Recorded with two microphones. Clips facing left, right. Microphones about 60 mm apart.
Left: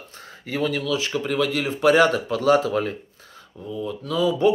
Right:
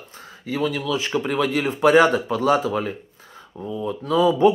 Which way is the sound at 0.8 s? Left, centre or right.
Right.